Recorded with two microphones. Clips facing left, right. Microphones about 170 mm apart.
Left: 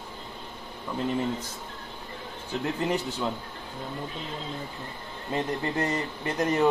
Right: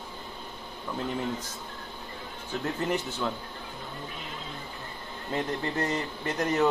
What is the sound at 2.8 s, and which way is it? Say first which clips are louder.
Speech: left 1 dB; 10° left (ahead or behind).